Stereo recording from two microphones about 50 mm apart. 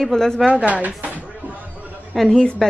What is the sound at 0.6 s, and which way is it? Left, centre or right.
Speech, right.